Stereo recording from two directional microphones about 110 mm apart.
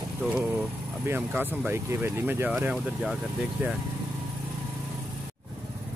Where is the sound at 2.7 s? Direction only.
5° right (ahead or behind).